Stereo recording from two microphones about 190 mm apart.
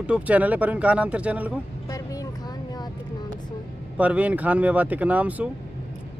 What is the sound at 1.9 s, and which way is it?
Vehicle, 15° left (ahead or behind).